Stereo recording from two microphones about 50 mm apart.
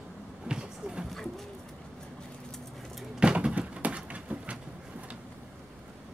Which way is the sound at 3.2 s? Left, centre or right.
Centre.